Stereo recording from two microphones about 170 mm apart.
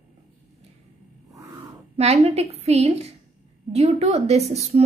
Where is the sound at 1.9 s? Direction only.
40° right (ahead or behind).